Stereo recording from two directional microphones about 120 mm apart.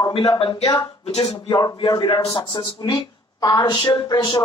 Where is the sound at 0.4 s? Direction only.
50° left (ahead or behind).